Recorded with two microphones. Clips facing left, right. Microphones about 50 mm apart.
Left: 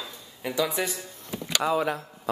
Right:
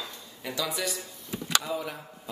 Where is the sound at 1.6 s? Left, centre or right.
Left.